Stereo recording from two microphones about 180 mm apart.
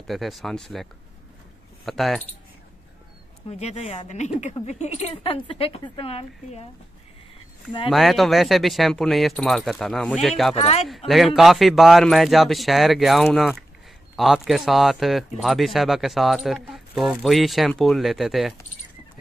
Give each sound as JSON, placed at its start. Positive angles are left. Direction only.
{"t": 0.0, "sound": "speech", "side_deg": 0}
{"t": 1.9, "sound": "speech", "side_deg": 0}
{"t": 3.4, "sound": "speech", "side_deg": 35}
{"t": 7.9, "sound": "speech", "side_deg": 0}
{"t": 10.5, "sound": "speech", "side_deg": 35}
{"t": 11.1, "sound": "speech", "side_deg": 0}